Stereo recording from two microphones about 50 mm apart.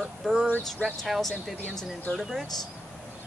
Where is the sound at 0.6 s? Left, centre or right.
Centre.